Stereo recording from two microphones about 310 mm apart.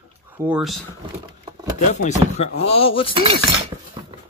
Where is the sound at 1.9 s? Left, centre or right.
Left.